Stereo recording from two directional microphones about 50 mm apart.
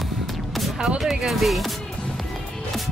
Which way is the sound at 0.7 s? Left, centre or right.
Centre.